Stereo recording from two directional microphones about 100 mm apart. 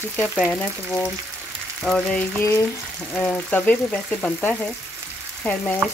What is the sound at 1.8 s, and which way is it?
Frying, 10° left (ahead or behind).